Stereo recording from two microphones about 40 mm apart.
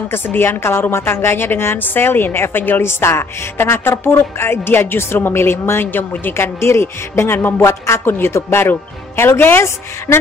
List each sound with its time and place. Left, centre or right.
0.1 s a woman's voice: left
1.8 s a woman's voice: left
2.8 s a woman's voice: left
7.3 s a sound: left
8.0 s speech: left